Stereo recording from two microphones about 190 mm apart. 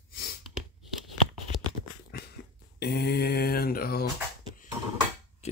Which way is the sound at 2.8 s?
60° left (ahead or behind).